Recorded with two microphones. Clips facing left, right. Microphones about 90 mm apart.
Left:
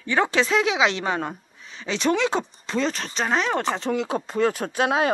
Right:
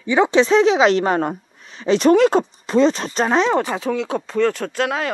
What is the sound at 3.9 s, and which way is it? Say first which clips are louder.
Speech: right 3 dB; 5° left (ahead or behind).